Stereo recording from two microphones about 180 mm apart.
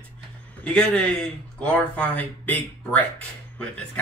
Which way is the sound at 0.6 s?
5° left (ahead or behind).